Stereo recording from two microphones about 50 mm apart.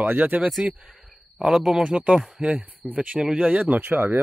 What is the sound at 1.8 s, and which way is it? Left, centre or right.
Speech, right.